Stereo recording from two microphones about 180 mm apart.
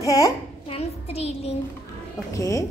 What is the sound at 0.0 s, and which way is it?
Speech, 20° left (ahead or behind).